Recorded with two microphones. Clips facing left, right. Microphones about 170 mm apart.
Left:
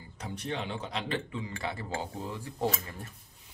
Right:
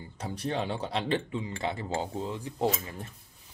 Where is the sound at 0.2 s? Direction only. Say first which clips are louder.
Right 4 dB; 35° right (ahead or behind).